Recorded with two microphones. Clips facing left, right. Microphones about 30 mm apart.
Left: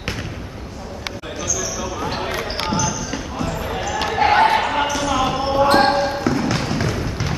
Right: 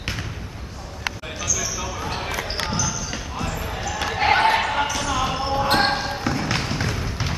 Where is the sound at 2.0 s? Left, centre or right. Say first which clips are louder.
Left 4 dB; centre.